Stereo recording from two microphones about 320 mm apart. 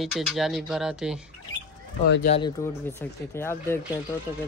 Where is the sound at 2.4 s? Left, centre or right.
Centre.